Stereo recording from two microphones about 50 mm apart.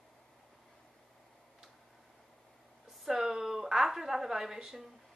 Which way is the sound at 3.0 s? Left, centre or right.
Centre.